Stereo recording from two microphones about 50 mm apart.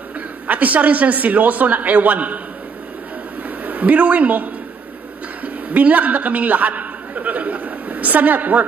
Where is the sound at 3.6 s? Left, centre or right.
Right.